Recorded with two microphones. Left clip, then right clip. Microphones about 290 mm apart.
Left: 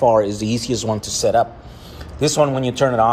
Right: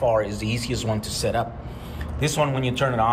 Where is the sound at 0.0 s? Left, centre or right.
Centre.